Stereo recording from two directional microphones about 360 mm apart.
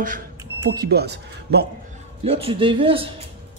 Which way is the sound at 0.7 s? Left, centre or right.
Right.